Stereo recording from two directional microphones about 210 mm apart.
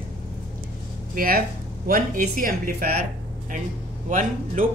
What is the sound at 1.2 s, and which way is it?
Speech, 45° right (ahead or behind).